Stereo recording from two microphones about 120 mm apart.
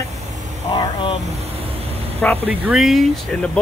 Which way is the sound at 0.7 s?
40° left (ahead or behind).